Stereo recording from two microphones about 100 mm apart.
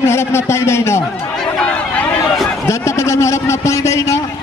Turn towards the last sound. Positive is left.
turn(degrees=30)  # may be behind; listen again after turning